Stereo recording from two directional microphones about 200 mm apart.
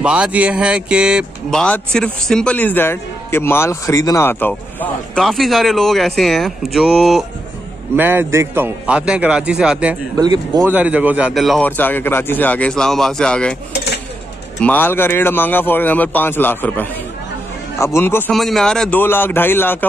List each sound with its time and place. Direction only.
0.0 s a man's voice: 5° right (ahead or behind)
10.1 s speech: 20° right (ahead or behind)
10.7 s speech: 5° right (ahead or behind)
14.6 s speech: 10° left (ahead or behind)